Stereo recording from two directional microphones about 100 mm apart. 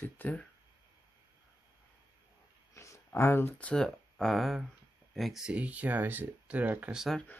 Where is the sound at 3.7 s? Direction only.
5° left (ahead or behind); by 7.0 s 10° right (ahead or behind).